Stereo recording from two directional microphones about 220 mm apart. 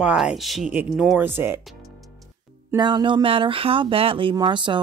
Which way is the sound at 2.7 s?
20° right (ahead or behind).